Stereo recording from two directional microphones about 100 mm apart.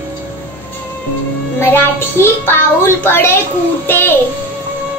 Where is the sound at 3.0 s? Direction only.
25° left (ahead or behind).